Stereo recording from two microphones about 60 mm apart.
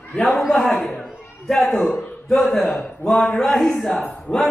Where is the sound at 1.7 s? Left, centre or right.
Left.